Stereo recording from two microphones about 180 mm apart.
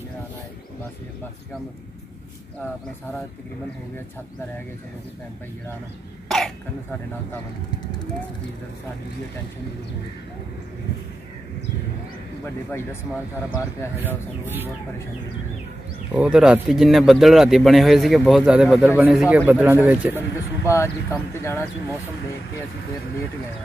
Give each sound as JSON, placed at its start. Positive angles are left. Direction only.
{"t": 6.2, "sound": "throat clearing", "side_deg": 0}
{"t": 16.2, "sound": "speech", "side_deg": -5}
{"t": 20.6, "sound": "speech", "side_deg": 15}